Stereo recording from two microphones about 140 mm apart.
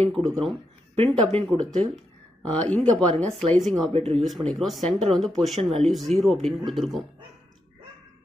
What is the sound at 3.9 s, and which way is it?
Speech, 45° right (ahead or behind).